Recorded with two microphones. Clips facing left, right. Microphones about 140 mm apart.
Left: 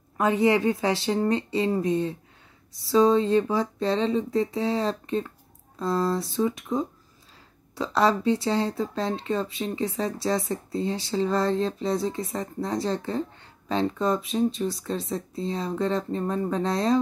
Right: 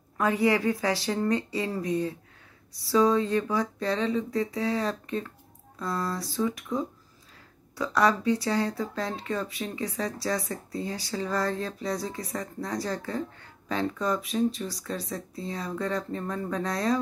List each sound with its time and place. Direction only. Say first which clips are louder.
0.2 s speech: left 3 dB; 25° left (ahead or behind)